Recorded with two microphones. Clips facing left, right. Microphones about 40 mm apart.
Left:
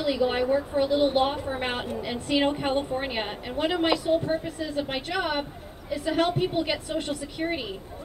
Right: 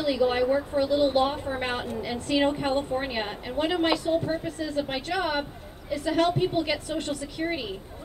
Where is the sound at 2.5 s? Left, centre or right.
Centre.